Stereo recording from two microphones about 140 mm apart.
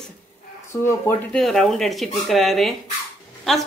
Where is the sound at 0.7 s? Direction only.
20° left (ahead or behind).